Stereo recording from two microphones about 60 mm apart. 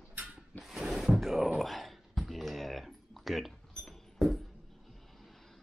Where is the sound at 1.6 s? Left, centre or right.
Centre.